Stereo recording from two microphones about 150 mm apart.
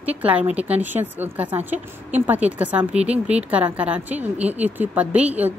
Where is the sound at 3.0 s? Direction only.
45° right (ahead or behind).